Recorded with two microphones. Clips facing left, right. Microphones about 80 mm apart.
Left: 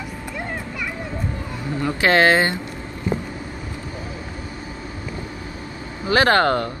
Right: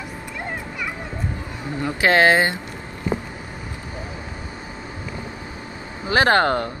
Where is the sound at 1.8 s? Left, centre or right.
Centre.